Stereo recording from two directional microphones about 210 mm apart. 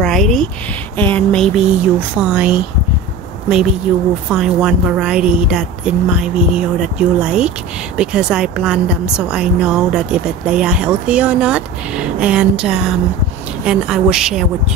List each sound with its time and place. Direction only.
0.0 s a sound: centre (ahead or behind)
0.9 s a woman's voice: 10° left (ahead or behind)
4.3 s a woman's voice: 5° right (ahead or behind)